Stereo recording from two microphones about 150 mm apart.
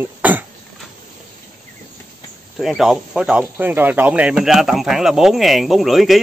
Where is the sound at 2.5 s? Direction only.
Centre (ahead or behind).